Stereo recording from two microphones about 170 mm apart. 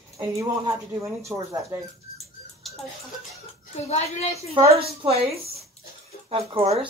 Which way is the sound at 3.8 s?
40° left (ahead or behind).